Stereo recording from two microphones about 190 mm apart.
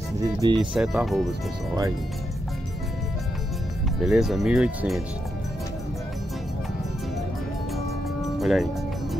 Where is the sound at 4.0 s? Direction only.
Centre (ahead or behind).